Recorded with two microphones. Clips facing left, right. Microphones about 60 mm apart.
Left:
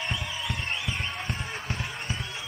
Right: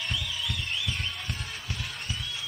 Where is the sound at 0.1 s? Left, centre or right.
Left.